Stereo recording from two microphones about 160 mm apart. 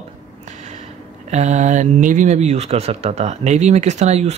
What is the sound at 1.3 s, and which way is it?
Speech, 45° right (ahead or behind).